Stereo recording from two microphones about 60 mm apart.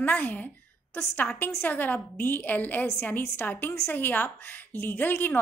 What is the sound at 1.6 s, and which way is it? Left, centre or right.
A woman's voice, left.